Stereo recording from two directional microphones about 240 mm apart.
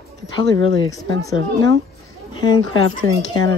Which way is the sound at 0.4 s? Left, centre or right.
Centre.